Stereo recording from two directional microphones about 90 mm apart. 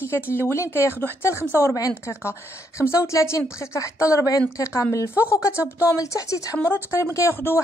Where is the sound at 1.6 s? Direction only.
35° left (ahead or behind).